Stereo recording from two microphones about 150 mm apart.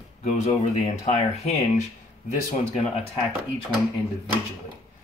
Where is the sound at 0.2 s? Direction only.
50° left (ahead or behind).